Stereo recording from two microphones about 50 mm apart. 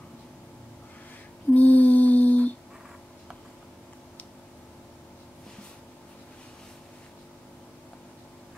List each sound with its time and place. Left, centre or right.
1.5 s lullaby: left